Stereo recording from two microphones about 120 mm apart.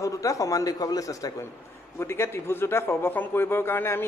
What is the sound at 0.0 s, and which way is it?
A man's voice, 25° left (ahead or behind).